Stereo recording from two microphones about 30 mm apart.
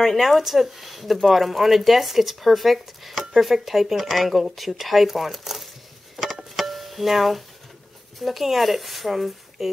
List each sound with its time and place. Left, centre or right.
0.0 s speech: centre
6.5 s music: centre
8.2 s speech: centre